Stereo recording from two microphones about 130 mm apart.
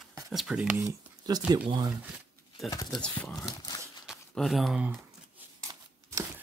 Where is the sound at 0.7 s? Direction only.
30° right (ahead or behind).